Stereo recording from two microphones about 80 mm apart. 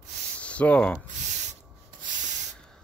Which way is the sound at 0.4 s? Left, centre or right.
Centre.